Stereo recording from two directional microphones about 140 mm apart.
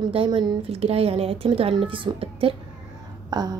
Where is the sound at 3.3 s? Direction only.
30° right (ahead or behind).